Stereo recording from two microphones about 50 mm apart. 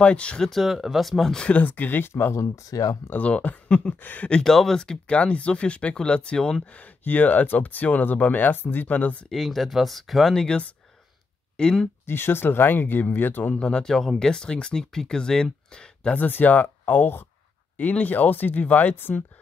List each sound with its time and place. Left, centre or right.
0.0 s speech: left
0.4 s speech: centre
1.4 s speech: left
2.7 s speech: left
3.2 s speech: left
4.4 s speech: centre
5.0 s speech: left
6.8 s speech: left
9.3 s speech: centre
10.3 s speech: centre
12.1 s speech: left
13.6 s speech: centre
16.2 s speech: left